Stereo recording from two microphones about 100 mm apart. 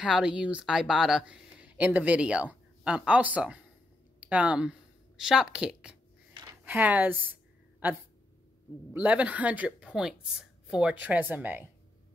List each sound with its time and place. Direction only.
0.0 s speech: 5° right (ahead or behind)
8.9 s speech: 15° right (ahead or behind)